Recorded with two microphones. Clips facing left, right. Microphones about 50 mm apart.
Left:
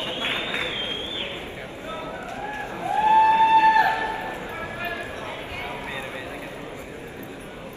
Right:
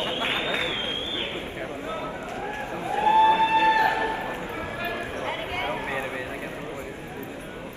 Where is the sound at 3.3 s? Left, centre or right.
Right.